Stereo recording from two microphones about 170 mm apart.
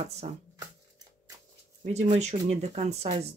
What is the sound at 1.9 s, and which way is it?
Speech, 40° right (ahead or behind).